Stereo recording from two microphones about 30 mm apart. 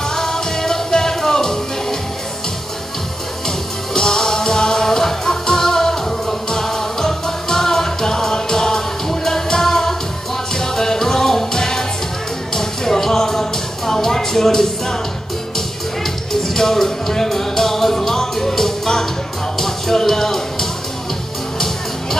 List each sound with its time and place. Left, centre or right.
0.1 s music: centre
3.4 s music: left
12.5 s a sound: centre
15.5 s music: centre